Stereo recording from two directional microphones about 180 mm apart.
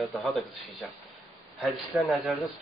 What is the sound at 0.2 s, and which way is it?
Speech, centre (ahead or behind).